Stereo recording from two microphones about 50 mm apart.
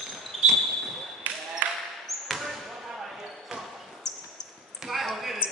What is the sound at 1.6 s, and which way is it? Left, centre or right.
Basketball bounce, right.